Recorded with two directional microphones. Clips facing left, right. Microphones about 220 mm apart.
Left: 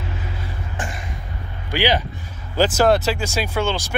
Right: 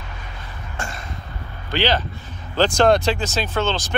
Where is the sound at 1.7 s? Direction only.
10° left (ahead or behind).